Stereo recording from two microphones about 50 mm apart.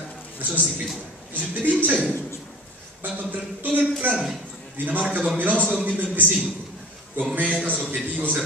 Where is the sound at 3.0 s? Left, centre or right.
Right.